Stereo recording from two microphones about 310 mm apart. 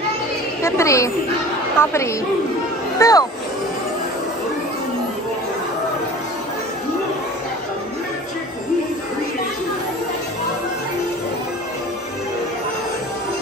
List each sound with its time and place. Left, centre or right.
0.6 s speech: centre
3.0 s speech: centre